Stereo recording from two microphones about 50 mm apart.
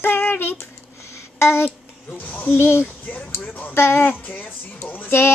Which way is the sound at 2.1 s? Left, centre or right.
Left.